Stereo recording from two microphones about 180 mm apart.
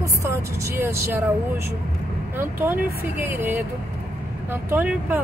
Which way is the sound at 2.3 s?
10° right (ahead or behind).